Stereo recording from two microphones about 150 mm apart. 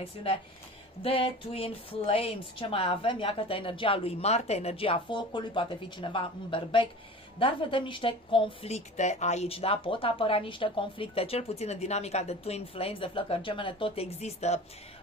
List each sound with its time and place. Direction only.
0.2 s a woman's voice: 40° left (ahead or behind)